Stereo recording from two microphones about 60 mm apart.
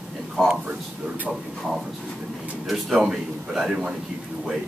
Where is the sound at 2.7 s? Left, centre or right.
Centre.